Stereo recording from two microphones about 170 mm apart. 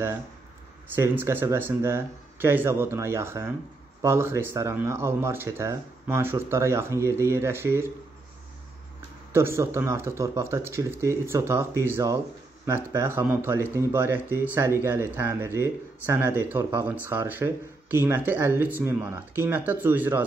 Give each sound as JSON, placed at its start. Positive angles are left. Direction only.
{"t": 0.9, "sound": "speech", "side_deg": -15}
{"t": 9.3, "sound": "speech", "side_deg": -15}